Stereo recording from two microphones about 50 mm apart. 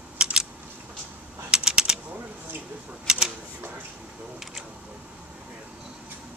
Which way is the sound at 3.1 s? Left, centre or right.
Centre.